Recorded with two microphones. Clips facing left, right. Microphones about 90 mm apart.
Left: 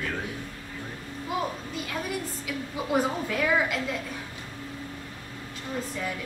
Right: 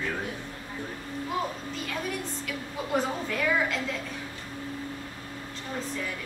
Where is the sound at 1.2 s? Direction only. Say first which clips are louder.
Left 2 dB; 5° left (ahead or behind).